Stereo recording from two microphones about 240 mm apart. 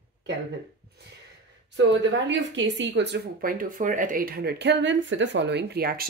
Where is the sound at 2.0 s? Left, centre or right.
Right.